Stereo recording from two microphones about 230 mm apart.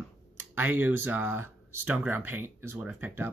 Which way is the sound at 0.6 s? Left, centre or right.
Centre.